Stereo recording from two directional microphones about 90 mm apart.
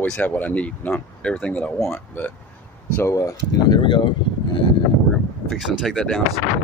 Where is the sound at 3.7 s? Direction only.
60° left (ahead or behind).